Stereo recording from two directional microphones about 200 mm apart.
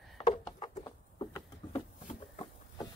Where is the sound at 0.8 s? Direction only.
20° left (ahead or behind).